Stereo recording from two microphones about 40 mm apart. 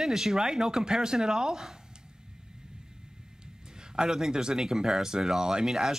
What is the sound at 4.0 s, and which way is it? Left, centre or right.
Speech, centre.